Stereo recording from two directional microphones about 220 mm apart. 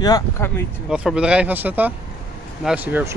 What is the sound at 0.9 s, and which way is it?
Speech, 5° right (ahead or behind).